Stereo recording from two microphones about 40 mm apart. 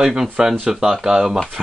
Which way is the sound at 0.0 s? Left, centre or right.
Centre.